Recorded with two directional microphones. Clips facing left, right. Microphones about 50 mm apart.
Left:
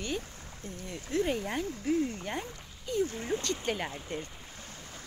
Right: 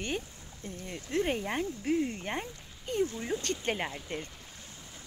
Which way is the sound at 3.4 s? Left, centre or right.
Right.